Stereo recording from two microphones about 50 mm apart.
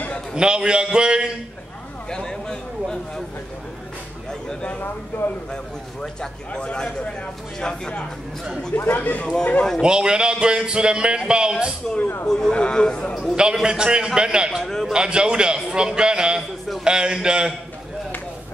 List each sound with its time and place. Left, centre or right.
0.4 s a man's voice: centre
2.0 s speech: centre
4.3 s speech: centre
6.5 s a man's voice: centre
8.7 s speech: left
9.2 s a man's voice: centre
9.8 s speech: centre
12.3 s a man's voice: centre
13.4 s speech: centre
14.6 s a man's voice: centre
14.9 s speech: centre